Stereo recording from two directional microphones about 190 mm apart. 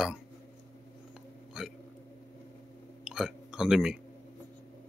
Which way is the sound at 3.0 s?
5° right (ahead or behind).